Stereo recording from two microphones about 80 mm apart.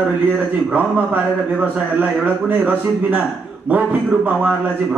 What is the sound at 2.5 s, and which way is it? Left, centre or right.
A man's voice, right.